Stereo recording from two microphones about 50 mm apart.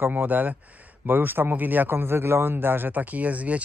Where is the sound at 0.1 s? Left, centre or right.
Right.